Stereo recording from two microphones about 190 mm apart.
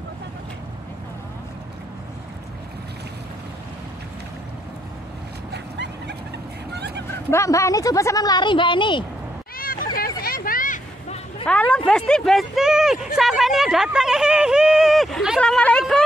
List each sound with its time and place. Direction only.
5.5 s a sound: 65° right (ahead or behind)
7.1 s speech: 15° left (ahead or behind)
9.6 s hubbub: 50° left (ahead or behind)
11.4 s speech: 5° left (ahead or behind)